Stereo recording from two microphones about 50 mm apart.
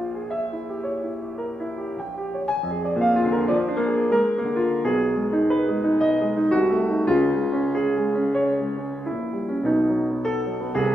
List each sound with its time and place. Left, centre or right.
2.4 s music: centre